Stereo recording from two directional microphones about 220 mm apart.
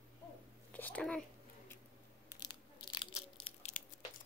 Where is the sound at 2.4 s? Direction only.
20° left (ahead or behind).